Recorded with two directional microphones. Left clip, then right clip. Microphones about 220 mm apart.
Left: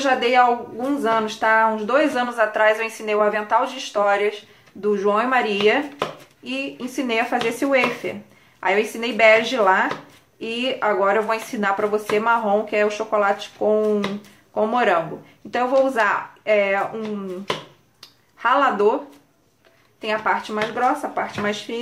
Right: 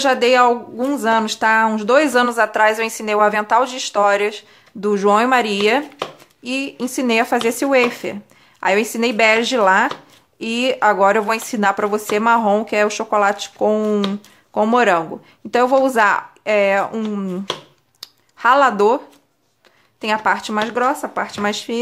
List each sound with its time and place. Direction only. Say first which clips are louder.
0.0 s speech: right 3 dB; 50° right (ahead or behind)
18.0 s a sound: right 6 dB; 45° right (ahead or behind)
20.0 s speech: right 4 dB; 50° right (ahead or behind)